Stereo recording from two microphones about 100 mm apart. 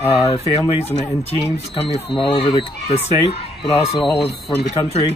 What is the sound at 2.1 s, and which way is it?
Speech, 55° left (ahead or behind).